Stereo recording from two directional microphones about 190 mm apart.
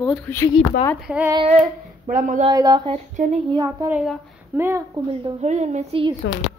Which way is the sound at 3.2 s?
40° right (ahead or behind).